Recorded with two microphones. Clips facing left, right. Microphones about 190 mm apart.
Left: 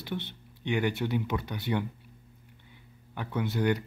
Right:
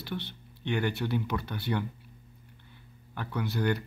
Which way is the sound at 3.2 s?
20° left (ahead or behind).